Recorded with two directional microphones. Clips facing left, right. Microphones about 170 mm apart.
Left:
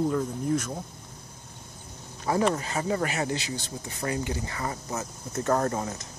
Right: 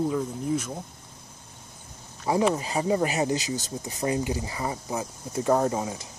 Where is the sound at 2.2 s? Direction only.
15° right (ahead or behind).